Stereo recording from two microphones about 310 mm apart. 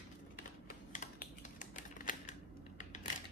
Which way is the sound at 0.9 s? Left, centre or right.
Left.